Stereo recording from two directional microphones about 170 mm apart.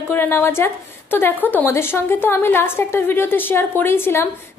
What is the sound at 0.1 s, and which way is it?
A woman's voice, 10° left (ahead or behind).